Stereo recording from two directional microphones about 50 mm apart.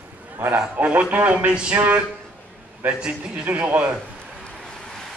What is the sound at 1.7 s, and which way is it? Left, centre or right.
Speech, right.